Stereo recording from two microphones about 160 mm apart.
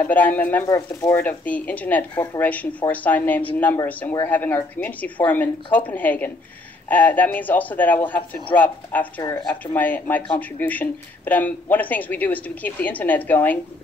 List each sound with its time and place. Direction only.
0.0 s a woman's voice: 10° left (ahead or behind)
9.2 s speech: 30° left (ahead or behind)
9.7 s a woman's voice: 10° left (ahead or behind)